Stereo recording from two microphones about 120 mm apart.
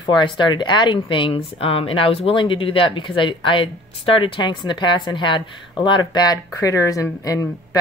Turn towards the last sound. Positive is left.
turn(degrees=30)  # may be behind; listen again after turning